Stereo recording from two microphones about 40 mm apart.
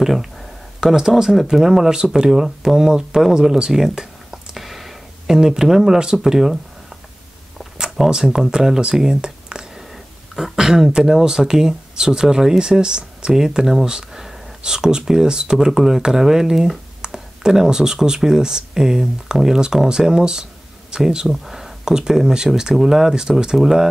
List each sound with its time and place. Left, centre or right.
0.0 s speech: centre
4.6 s a sound: centre
6.2 s speech: centre
8.1 s speech: centre
10.3 s speech: centre
15.5 s speech: centre
16.1 s a sound: centre
17.6 s speech: centre
21.3 s speech: centre